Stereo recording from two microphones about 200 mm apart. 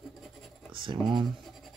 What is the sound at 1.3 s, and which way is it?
Scratch, centre (ahead or behind).